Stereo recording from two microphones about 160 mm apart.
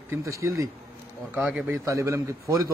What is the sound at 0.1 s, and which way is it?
Speech, 20° right (ahead or behind).